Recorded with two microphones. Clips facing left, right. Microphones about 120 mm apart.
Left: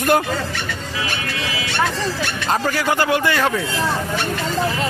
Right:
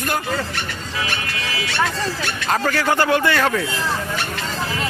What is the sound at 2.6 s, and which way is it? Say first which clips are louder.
Speech: right 2 dB; 15° left (ahead or behind).